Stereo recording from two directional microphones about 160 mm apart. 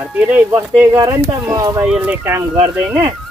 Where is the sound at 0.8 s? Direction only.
20° right (ahead or behind).